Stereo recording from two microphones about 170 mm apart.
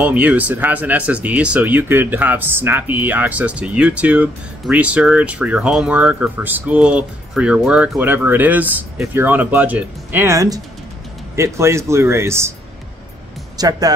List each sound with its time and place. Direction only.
0.0 s speech: 10° right (ahead or behind)
13.6 s speech: 20° right (ahead or behind)